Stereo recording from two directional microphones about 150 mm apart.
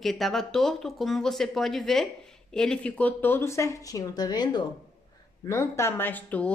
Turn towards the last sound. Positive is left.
turn(degrees=10)  # may be behind; listen again after turning